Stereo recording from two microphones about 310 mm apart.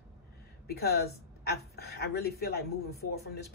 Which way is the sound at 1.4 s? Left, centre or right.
Left.